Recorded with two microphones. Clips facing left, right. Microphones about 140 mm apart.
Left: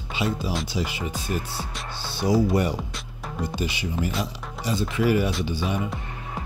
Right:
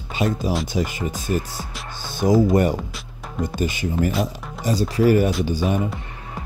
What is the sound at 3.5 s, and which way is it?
Speech, 45° right (ahead or behind).